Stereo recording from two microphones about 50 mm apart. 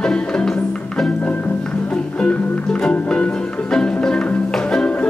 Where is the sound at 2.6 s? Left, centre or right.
Centre.